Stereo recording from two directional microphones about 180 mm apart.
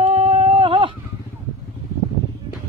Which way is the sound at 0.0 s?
35° right (ahead or behind).